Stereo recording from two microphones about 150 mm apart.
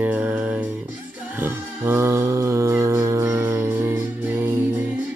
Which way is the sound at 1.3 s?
15° right (ahead or behind).